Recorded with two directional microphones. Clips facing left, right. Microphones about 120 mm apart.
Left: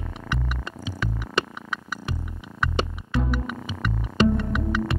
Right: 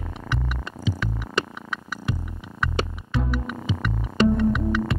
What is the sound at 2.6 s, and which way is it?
Music, centre (ahead or behind).